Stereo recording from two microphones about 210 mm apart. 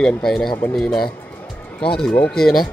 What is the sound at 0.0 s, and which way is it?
Speech, centre (ahead or behind).